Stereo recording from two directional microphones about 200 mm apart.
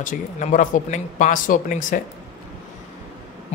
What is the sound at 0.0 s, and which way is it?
Speech, 40° left (ahead or behind).